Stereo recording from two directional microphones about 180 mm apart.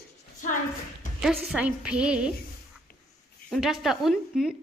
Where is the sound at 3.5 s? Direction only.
Centre (ahead or behind).